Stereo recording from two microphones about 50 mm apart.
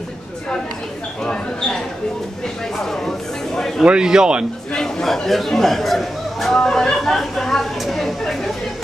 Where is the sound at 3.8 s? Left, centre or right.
Centre.